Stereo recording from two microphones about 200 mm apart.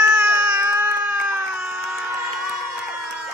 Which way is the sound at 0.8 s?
5° right (ahead or behind).